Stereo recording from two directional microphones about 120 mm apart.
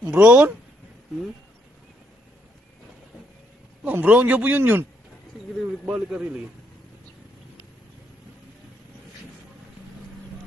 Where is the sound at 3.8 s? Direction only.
10° right (ahead or behind).